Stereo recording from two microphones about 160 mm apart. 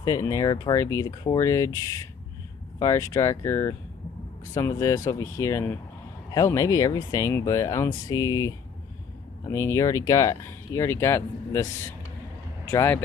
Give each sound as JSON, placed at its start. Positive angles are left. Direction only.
{"t": 0.0, "sound": "speech", "side_deg": 20}
{"t": 12.7, "sound": "speech", "side_deg": 15}